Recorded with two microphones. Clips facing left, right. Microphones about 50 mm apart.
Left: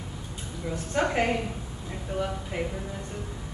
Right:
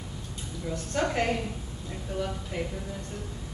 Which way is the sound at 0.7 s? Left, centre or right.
Centre.